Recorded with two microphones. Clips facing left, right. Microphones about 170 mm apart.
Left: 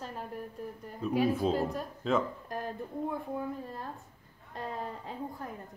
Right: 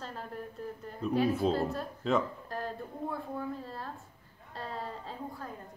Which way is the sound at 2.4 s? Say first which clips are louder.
Left 1 dB; 15° left (ahead or behind).